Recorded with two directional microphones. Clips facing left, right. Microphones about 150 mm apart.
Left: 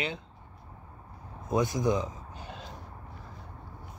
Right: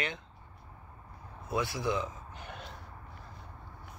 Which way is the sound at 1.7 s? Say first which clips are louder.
Left 5 dB; 40° left (ahead or behind).